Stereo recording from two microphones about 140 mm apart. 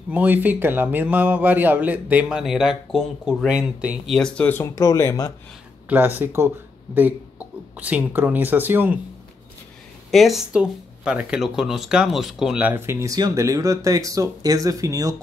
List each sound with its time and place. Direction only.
0.1 s speech: 10° right (ahead or behind)
4.1 s speech: 5° left (ahead or behind)
4.6 s speech: 25° left (ahead or behind)
5.9 s speech: 15° right (ahead or behind)
10.1 s speech: centre (ahead or behind); by 15.1 s 25° right (ahead or behind)